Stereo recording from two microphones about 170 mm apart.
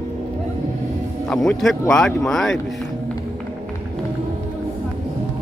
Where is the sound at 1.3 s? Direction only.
Centre (ahead or behind).